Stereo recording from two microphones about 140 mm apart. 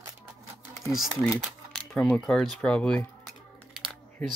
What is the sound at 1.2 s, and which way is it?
Speech, centre (ahead or behind).